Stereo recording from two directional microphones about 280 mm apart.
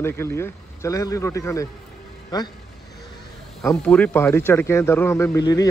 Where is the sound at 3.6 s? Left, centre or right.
Centre.